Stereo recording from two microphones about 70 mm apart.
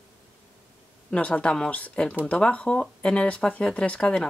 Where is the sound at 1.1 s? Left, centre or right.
Centre.